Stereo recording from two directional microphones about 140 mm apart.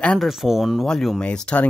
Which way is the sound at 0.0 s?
5° left (ahead or behind).